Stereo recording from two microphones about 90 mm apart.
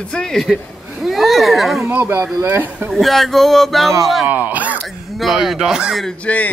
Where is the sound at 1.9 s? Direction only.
25° right (ahead or behind).